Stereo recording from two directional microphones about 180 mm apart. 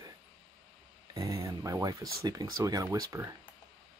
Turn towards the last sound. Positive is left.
turn(degrees=-20)  # may be behind; listen again after turning